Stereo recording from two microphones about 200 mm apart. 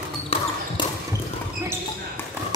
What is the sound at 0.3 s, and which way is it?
Basketball bounce, 30° left (ahead or behind).